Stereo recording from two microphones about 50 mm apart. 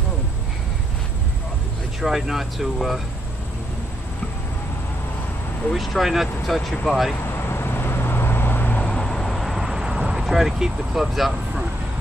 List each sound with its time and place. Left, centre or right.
2.0 s speech: centre
5.7 s speech: centre
7.3 s vehicle: left
8.8 s vehicle: centre